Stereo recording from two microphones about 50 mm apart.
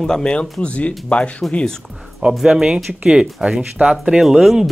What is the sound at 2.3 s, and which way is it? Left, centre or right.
Speech, centre.